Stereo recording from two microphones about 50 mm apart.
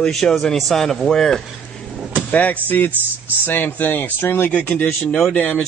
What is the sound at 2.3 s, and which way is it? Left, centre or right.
Speech, left.